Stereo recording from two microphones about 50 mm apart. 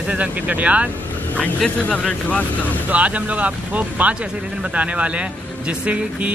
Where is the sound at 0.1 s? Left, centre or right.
Right.